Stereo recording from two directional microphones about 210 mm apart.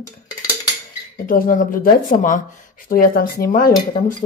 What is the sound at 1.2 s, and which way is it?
Speech, 40° left (ahead or behind).